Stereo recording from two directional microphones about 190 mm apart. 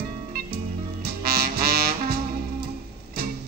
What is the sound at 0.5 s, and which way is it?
Music, 55° right (ahead or behind).